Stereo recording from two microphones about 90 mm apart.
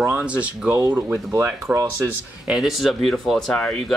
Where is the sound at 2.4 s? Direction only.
5° right (ahead or behind); by 3.7 s 10° left (ahead or behind).